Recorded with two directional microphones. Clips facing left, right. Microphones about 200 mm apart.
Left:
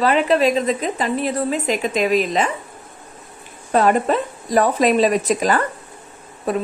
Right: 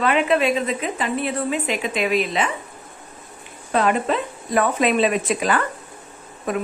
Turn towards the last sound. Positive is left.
turn(degrees=35)  # may be behind; listen again after turning